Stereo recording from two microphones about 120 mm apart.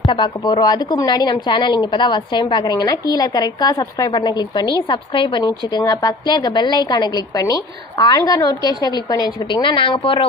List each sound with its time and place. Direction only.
0.0 s a woman's voice: 40° left (ahead or behind)